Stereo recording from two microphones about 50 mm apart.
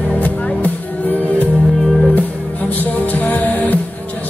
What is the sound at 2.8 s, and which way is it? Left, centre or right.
Music, left.